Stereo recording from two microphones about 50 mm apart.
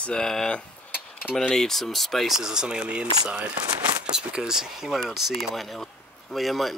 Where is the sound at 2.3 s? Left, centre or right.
Centre.